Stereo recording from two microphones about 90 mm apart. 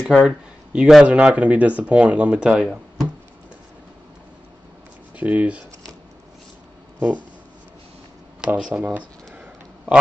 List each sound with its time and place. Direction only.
0.0 s speech: 10° right (ahead or behind)
5.1 s speech: 15° right (ahead or behind)
8.4 s a sound: 10° right (ahead or behind)